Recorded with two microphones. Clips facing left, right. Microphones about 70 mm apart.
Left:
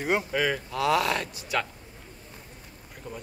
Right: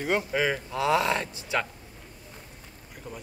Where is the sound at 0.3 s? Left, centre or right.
Centre.